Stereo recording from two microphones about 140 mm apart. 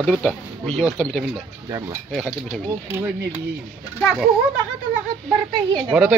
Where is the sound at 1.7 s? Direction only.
20° right (ahead or behind).